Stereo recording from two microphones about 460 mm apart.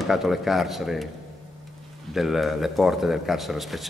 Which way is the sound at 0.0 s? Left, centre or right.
Centre.